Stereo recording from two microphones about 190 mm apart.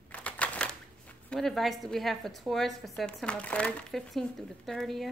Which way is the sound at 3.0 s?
5° left (ahead or behind).